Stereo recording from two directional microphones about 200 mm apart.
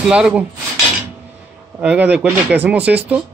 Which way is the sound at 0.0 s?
5° right (ahead or behind).